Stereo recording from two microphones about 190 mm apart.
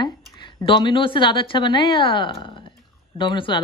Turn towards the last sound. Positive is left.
turn(degrees=25)  # may be behind; listen again after turning